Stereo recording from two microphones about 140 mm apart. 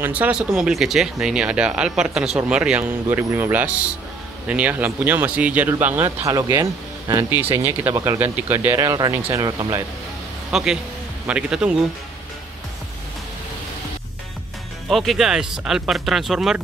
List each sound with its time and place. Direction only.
0.0 s speech: 10° right (ahead or behind)
7.9 s speech: 25° right (ahead or behind)
8.2 s speech: 15° right (ahead or behind)
9.1 s speech: 15° right (ahead or behind)
9.4 s speech: 30° right (ahead or behind)
10.5 s a man's voice: 5° right (ahead or behind)
14.9 s speech: centre (ahead or behind)